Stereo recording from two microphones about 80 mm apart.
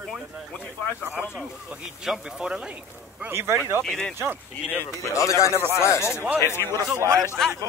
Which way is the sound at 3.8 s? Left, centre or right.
Centre.